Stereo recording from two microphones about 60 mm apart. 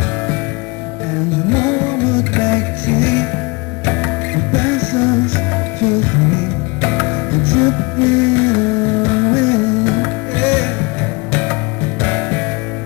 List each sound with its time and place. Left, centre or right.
1.5 s music: left
12.0 s music: left